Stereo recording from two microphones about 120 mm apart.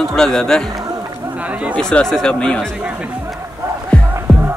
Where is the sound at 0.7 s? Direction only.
30° right (ahead or behind).